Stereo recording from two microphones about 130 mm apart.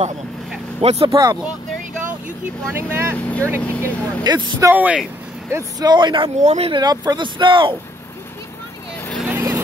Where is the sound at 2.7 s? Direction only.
20° right (ahead or behind).